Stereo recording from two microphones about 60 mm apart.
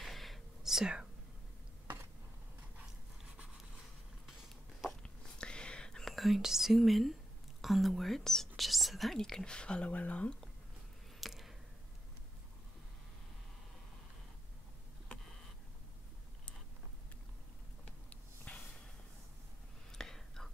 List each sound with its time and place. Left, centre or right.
0.0 s whispering: centre
5.0 s whispering: centre
7.6 s speech: centre; by 10.3 s left
11.1 s a sound: centre
17.8 s a sound: left
19.9 s whispering: centre